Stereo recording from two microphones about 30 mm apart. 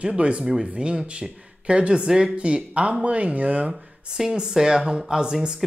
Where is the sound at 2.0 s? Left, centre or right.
Right.